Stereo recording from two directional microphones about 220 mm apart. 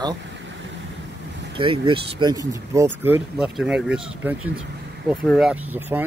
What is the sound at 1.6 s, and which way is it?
Speech, 20° right (ahead or behind).